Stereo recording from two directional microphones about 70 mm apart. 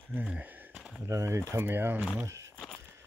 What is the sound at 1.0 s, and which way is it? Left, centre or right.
Speech, right.